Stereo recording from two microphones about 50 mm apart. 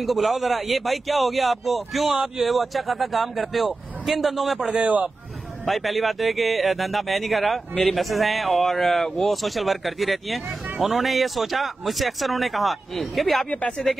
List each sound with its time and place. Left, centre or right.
0.0 s speech: centre
4.7 s speech: right
5.7 s speech: centre
13.5 s speech: left